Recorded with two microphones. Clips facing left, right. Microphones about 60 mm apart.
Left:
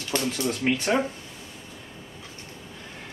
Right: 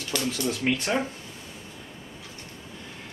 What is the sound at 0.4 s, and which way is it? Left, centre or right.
Speech, centre.